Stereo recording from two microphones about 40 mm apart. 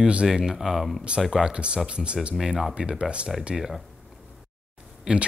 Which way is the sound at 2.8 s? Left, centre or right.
Right.